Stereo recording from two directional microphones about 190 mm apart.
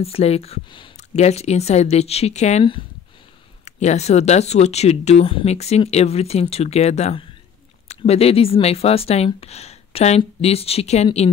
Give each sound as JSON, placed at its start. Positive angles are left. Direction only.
{"t": 0.0, "sound": "speech", "side_deg": 30}